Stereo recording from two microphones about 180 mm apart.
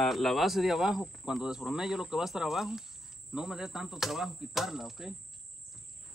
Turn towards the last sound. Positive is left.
turn(degrees=0)  # may be behind; listen again after turning